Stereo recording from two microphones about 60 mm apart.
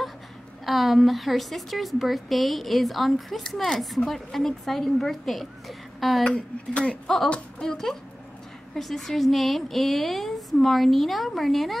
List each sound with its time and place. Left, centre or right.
0.7 s a woman's voice: centre
6.2 s a woman's voice: centre
7.6 s a woman's voice: centre